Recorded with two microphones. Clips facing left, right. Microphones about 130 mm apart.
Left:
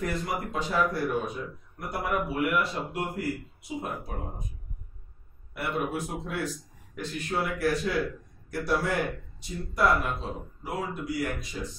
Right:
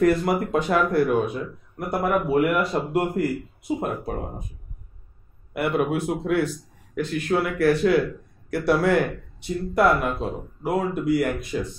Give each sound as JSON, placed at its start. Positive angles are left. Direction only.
{"t": 0.0, "sound": "a man's voice", "side_deg": -65}
{"t": 5.5, "sound": "speech", "side_deg": -60}